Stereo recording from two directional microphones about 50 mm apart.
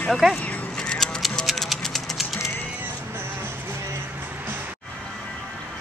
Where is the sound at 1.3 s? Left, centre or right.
Centre.